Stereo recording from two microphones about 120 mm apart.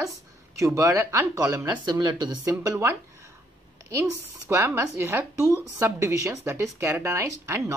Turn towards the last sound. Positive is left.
turn(degrees=-20)  # may be behind; listen again after turning